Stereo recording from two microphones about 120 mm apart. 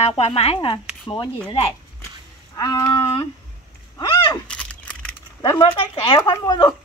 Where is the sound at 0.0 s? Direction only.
55° left (ahead or behind).